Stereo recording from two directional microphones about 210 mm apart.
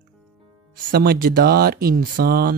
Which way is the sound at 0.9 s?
45° right (ahead or behind).